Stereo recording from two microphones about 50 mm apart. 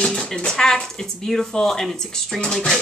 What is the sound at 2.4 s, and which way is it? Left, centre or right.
Speech, centre.